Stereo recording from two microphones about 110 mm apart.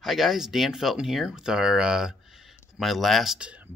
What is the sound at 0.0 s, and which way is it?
Speech, centre (ahead or behind).